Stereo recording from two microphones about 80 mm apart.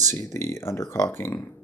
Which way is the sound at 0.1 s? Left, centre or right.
Left.